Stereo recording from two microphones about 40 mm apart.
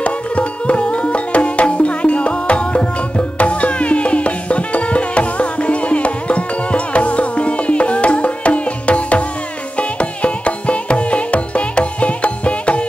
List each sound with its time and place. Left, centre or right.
0.0 s music: left